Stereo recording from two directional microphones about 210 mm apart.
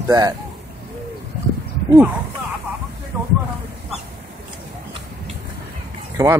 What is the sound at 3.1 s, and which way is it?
Vehicle, 10° right (ahead or behind).